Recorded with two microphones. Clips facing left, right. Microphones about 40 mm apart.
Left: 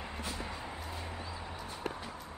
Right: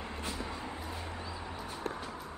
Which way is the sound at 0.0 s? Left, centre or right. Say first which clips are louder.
Right 1 dB; centre.